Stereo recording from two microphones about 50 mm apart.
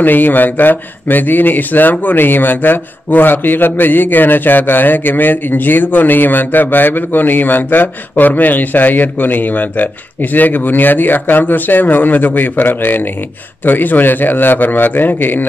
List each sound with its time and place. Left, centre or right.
0.0 s speech: left